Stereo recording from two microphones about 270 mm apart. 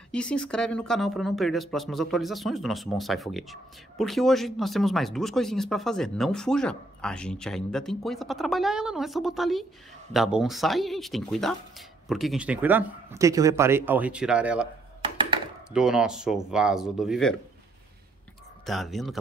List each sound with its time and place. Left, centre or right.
0.1 s speech: centre
15.1 s a sound: centre
15.7 s speech: centre
18.7 s speech: centre